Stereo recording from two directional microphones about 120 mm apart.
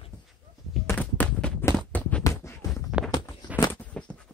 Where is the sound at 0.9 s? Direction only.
10° left (ahead or behind).